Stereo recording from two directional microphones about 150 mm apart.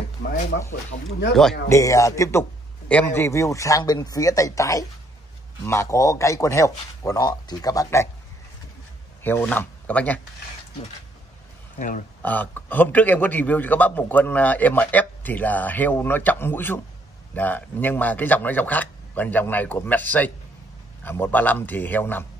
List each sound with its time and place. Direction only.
1.7 s a man's voice: 20° left (ahead or behind)
9.2 s speech: 15° left (ahead or behind)
11.8 s speech: 50° left (ahead or behind)
12.2 s a man's voice: 10° left (ahead or behind)